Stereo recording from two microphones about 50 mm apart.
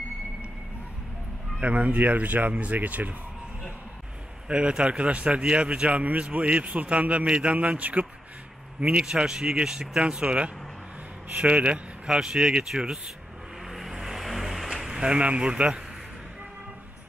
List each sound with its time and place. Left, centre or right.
1.6 s speech: right
4.5 s speech: right
8.8 s speech: centre
12.1 s speech: centre
13.7 s vehicle: centre; by 15.8 s right